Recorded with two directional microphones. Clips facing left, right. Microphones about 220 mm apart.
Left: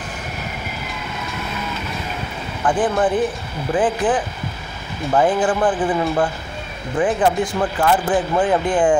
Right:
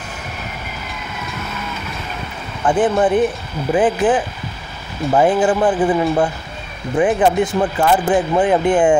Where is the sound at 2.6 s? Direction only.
25° right (ahead or behind).